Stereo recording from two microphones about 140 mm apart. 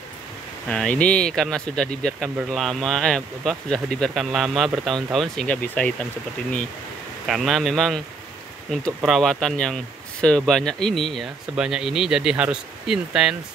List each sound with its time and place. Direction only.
0.7 s speech: 10° left (ahead or behind)
7.2 s speech: centre (ahead or behind)